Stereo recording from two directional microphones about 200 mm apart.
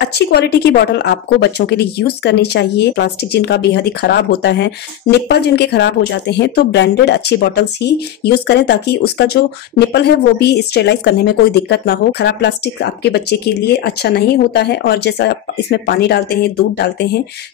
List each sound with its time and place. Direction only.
0.1 s speech: 55° left (ahead or behind)